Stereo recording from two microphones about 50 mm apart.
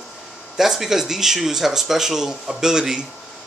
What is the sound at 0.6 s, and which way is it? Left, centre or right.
Speech, centre.